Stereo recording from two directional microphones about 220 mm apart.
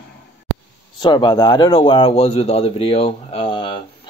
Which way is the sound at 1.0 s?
20° left (ahead or behind).